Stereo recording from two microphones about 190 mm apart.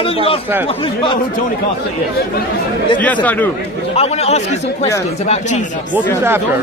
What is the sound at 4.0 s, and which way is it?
Speech, 35° left (ahead or behind).